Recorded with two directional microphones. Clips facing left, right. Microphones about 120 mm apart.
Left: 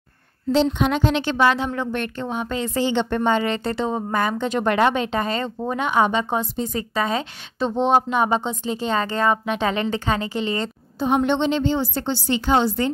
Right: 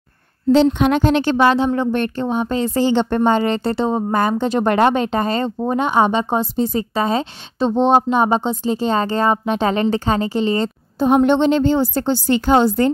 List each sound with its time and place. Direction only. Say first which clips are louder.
0.5 s a woman's voice: right 6 dB; 60° right (ahead or behind); by 10.7 s 35° right (ahead or behind)
11.0 s a woman's voice: right 6 dB; 45° right (ahead or behind)